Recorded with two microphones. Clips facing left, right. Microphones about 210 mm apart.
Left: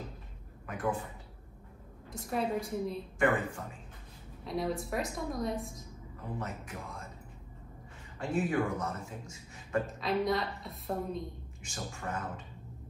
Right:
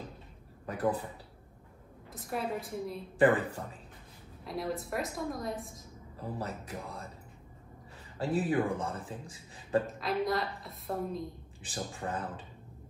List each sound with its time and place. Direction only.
0.7 s a man's voice: 35° right (ahead or behind)
2.1 s a woman's voice: centre (ahead or behind)
3.2 s a man's voice: 35° right (ahead or behind)
4.5 s a woman's voice: centre (ahead or behind)
6.1 s a man's voice: 35° right (ahead or behind)
8.2 s a man's voice: 35° right (ahead or behind)
9.9 s a woman's voice: centre (ahead or behind)
11.6 s a man's voice: 35° right (ahead or behind)